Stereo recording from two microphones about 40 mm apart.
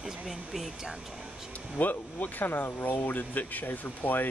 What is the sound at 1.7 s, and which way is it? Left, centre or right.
Speech, left.